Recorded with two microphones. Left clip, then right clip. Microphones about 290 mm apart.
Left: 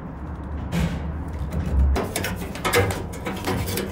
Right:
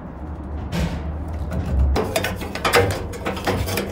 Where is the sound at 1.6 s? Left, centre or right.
Centre.